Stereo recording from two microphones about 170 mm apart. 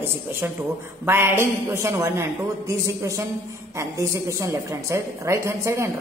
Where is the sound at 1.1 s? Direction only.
15° right (ahead or behind).